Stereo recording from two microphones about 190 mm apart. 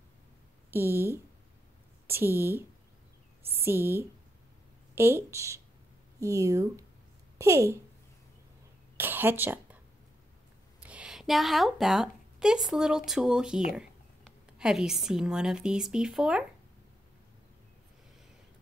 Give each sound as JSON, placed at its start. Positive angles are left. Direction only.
{"t": 0.7, "sound": "a woman's voice", "side_deg": -10}
{"t": 8.9, "sound": "a sound", "side_deg": -10}
{"t": 10.8, "sound": "a woman's voice", "side_deg": -5}